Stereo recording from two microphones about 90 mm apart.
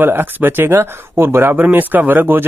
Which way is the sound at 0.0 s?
25° right (ahead or behind).